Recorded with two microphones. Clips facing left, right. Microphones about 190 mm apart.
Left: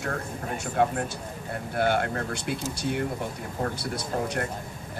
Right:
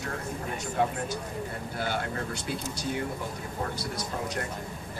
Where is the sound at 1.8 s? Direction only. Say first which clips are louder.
Left 7 dB; 60° left (ahead or behind).